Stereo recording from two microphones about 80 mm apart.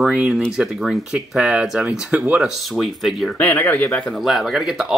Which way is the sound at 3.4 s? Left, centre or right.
Centre.